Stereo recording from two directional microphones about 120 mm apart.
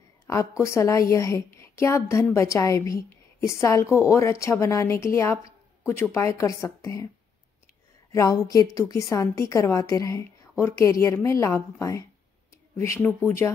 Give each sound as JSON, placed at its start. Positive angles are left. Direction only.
{"t": 0.3, "sound": "a woman's voice", "side_deg": 25}
{"t": 8.1, "sound": "a woman's voice", "side_deg": 30}